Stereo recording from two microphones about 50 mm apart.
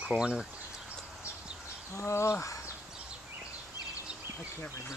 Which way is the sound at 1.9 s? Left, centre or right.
Left.